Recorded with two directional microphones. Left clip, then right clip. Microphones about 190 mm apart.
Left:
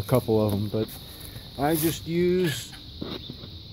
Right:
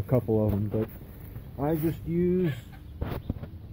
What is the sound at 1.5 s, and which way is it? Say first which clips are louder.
Speech: left 4 dB; 15° left (ahead or behind).